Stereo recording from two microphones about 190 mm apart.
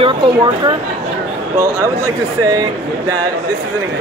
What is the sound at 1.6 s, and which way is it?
Speech, 15° right (ahead or behind).